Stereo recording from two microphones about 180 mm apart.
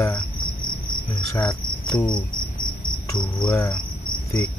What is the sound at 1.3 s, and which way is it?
Cricket, 25° left (ahead or behind).